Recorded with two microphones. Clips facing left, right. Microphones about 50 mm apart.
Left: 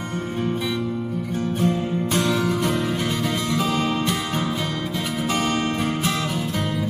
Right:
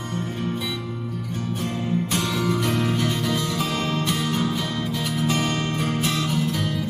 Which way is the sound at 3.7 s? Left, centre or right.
Centre.